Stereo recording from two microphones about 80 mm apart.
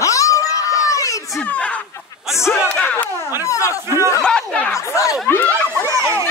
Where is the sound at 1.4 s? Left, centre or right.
Centre.